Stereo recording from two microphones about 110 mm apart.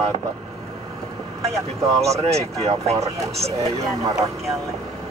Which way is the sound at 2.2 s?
65° right (ahead or behind).